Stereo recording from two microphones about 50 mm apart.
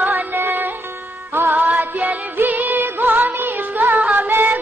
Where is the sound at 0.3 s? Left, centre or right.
Right.